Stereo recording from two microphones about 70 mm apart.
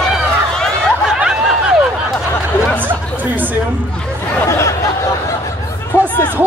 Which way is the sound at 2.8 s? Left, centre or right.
Right.